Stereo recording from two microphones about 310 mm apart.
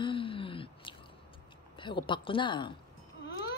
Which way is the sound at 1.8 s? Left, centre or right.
Centre.